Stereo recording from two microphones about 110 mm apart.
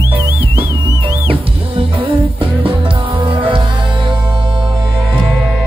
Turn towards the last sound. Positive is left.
turn(degrees=-50)  # may be behind; listen again after turning